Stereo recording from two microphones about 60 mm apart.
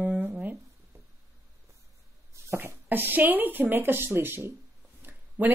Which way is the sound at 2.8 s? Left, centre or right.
Right.